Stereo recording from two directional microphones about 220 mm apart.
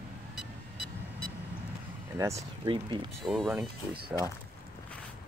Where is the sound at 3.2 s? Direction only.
Centre (ahead or behind).